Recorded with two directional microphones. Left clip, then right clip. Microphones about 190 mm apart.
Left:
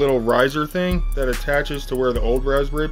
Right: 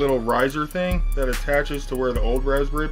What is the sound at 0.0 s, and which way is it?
Speech, 35° left (ahead or behind).